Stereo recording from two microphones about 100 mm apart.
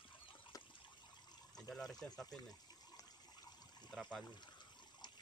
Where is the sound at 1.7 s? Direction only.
5° left (ahead or behind).